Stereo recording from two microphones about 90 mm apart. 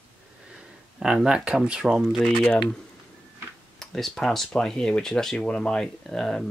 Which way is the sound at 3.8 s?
5° left (ahead or behind).